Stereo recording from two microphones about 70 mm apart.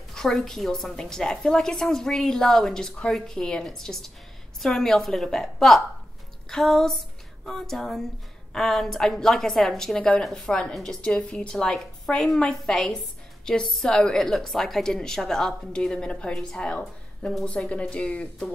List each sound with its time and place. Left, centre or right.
0.1 s a woman's voice: centre
6.5 s a sound: centre
8.5 s a woman's voice: centre